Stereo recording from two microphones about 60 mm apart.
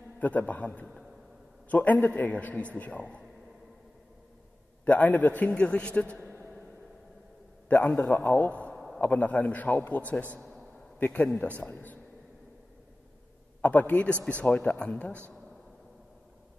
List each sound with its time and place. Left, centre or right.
0.2 s a man's voice: left
1.7 s a man's voice: left
4.8 s a man's voice: left
7.6 s a man's voice: left
8.7 s a sound: centre
9.0 s a man's voice: left
13.6 s a man's voice: left